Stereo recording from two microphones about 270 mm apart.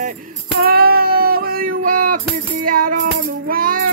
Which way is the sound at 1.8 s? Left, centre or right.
Right.